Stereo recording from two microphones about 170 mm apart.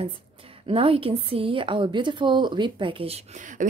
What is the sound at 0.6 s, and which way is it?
A woman's voice, 35° right (ahead or behind).